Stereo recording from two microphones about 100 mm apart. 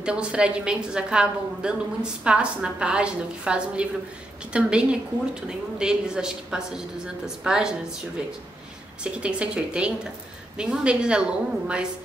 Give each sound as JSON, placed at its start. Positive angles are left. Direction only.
{"t": 0.0, "sound": "a woman's voice", "side_deg": -10}
{"t": 9.0, "sound": "a woman's voice", "side_deg": -10}